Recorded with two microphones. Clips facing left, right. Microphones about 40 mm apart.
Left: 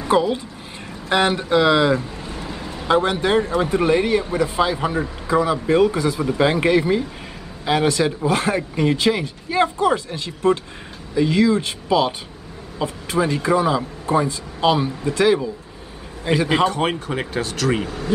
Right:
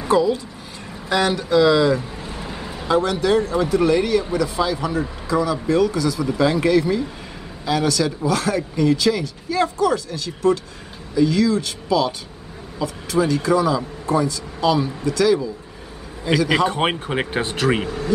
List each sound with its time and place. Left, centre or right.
0.1 s speech: left
2.0 s a sound: centre
2.9 s speech: left
16.6 s speech: right
17.8 s speech: centre